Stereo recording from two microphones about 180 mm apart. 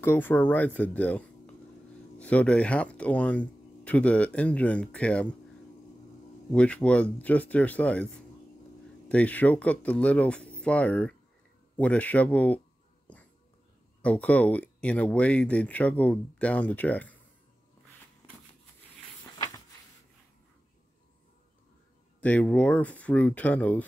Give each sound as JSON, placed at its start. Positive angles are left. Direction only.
{"t": 0.0, "sound": "speech", "side_deg": 10}
{"t": 6.5, "sound": "speech", "side_deg": 5}
{"t": 9.1, "sound": "speech", "side_deg": 10}
{"t": 13.0, "sound": "cat", "side_deg": 10}
{"t": 14.0, "sound": "speech", "side_deg": 10}
{"t": 19.3, "sound": "a sound", "side_deg": 20}
{"t": 22.2, "sound": "speech", "side_deg": 10}